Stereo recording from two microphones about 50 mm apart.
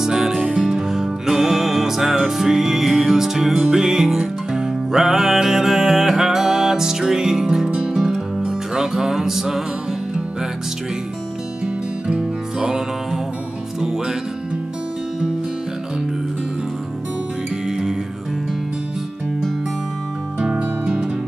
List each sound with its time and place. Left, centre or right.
0.0 s music: centre
11.6 s music: centre
17.6 s music: centre
20.3 s music: centre